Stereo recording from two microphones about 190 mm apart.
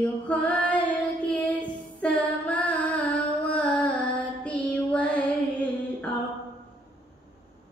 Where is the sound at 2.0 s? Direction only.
5° left (ahead or behind).